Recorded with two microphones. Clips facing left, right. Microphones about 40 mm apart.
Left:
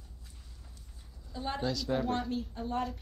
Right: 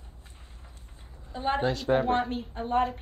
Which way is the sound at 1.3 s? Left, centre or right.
Right.